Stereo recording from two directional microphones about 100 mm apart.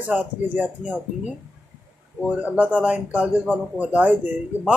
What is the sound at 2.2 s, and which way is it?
A man's voice, 15° right (ahead or behind).